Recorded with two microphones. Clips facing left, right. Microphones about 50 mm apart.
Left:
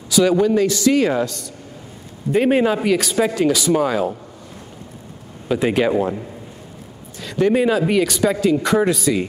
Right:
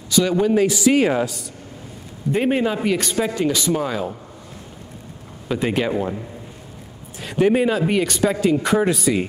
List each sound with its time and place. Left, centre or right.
0.1 s a man's voice: centre
0.4 s speech: centre
2.5 s speech: centre
2.8 s speech: centre
3.7 s speech: centre
5.5 s speech: centre
7.2 s speech: right
7.5 s speech: centre